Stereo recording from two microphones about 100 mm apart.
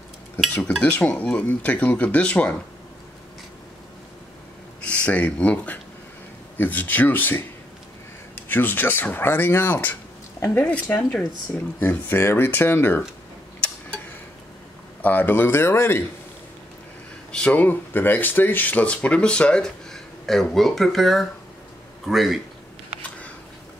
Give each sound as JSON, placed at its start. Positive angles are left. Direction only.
{"t": 0.6, "sound": "speech", "side_deg": 10}
{"t": 4.8, "sound": "speech", "side_deg": 15}
{"t": 15.0, "sound": "speech", "side_deg": 20}
{"t": 17.3, "sound": "a man's voice", "side_deg": 10}